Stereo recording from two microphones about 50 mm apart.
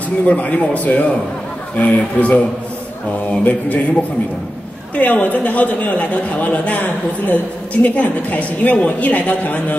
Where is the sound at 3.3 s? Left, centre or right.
Left.